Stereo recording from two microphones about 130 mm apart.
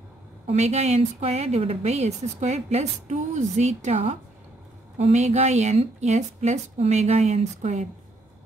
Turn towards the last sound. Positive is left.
turn(degrees=-65)  # may be behind; listen again after turning